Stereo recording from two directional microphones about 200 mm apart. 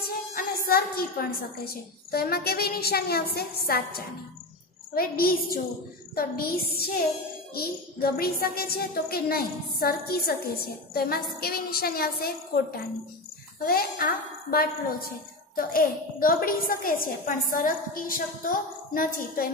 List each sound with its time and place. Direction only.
0.0 s a sound: 50° left (ahead or behind)
0.7 s a child's voice: 50° left (ahead or behind)
13.7 s a child's voice: 50° left (ahead or behind)